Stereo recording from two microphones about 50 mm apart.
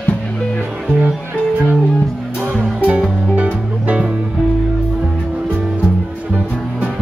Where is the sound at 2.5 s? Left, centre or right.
Right.